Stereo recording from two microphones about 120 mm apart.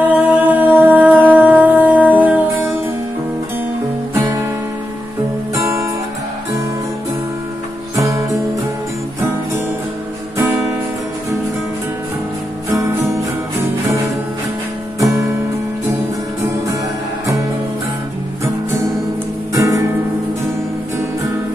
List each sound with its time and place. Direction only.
0.0 s music: 15° right (ahead or behind)
5.5 s guitar: 25° right (ahead or behind)
7.9 s music: 25° right (ahead or behind)
19.5 s music: 25° right (ahead or behind)